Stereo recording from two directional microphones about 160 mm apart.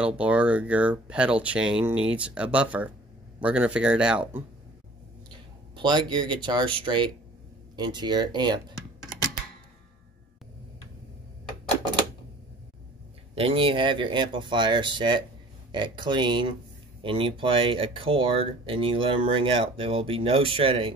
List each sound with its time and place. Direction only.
0.0 s speech: 5° right (ahead or behind)
5.8 s speech: 30° right (ahead or behind)
13.3 s speech: 35° right (ahead or behind)